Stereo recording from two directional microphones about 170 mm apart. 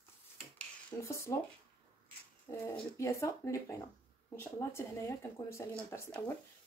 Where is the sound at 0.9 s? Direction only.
15° left (ahead or behind).